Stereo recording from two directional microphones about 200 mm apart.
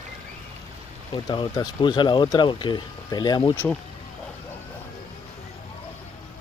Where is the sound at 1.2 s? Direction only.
20° left (ahead or behind).